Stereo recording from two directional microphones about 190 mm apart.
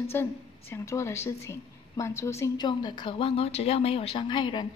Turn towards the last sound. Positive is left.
turn(degrees=25)  # may be behind; listen again after turning